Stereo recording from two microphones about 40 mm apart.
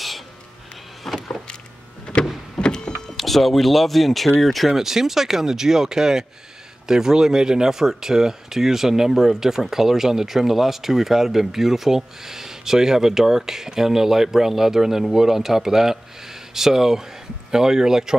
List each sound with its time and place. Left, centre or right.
1.0 s vehicle: centre
2.1 s a sound: left
2.5 s vehicle: centre
3.2 s speech: centre
4.7 s speech: centre